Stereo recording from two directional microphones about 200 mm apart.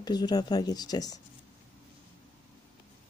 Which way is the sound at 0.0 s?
20° left (ahead or behind).